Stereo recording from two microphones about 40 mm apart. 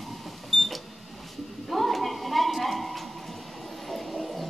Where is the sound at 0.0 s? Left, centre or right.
Centre.